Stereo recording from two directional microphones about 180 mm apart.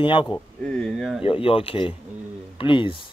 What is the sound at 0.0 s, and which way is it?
Speech, 30° left (ahead or behind).